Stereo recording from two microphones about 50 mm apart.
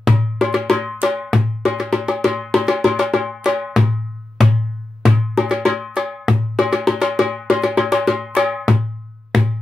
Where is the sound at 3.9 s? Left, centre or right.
Centre.